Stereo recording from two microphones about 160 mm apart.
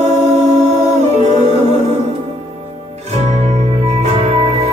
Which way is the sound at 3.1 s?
45° right (ahead or behind).